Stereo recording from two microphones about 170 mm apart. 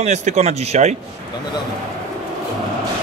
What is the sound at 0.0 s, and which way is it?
Speech, 45° right (ahead or behind).